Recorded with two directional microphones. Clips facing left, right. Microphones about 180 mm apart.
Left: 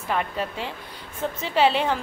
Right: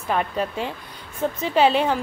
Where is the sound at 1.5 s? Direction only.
15° right (ahead or behind).